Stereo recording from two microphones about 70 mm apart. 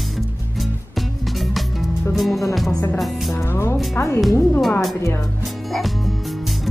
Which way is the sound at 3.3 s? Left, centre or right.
Left.